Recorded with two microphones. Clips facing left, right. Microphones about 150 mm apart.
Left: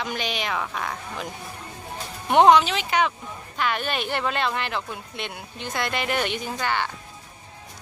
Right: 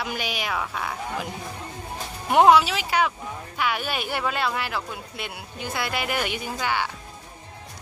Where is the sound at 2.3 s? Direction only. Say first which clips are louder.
Left 1 dB; 5° right (ahead or behind).